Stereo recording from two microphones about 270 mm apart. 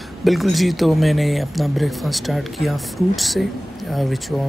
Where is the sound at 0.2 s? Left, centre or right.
Centre.